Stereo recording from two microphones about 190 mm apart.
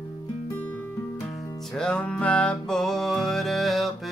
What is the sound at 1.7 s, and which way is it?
Music, 5° left (ahead or behind).